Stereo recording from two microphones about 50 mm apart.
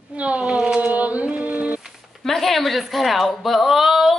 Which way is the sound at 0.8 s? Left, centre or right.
Right.